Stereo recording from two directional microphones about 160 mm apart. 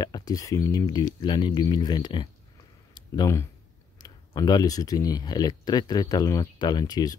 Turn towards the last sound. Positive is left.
turn(degrees=25)  # may be behind; listen again after turning